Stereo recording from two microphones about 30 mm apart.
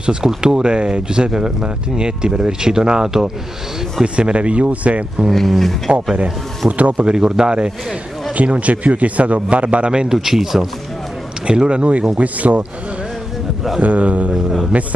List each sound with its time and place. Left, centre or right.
0.0 s speech: right
4.0 s a man's voice: right
5.3 s speech: centre
6.8 s a man's voice: right
7.1 s speech: right
8.4 s a man's voice: right
10.1 s speech: centre
11.4 s speech: right
12.2 s a man's voice: right
13.7 s a man's voice: right